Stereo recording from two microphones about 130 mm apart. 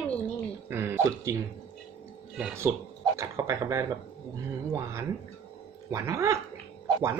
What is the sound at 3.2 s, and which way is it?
Speech, 20° right (ahead or behind).